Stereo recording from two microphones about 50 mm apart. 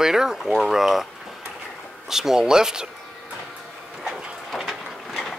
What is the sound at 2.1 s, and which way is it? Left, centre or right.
Speech, centre.